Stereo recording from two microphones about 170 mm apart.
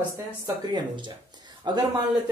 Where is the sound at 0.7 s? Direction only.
30° right (ahead or behind).